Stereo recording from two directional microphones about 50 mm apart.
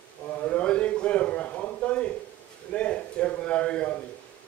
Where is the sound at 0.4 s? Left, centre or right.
Left.